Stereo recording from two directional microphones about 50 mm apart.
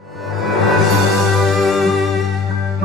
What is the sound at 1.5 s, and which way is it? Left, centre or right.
Music, centre.